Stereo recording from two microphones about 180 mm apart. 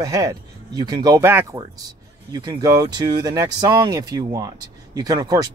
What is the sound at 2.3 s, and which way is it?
Speech, 25° right (ahead or behind).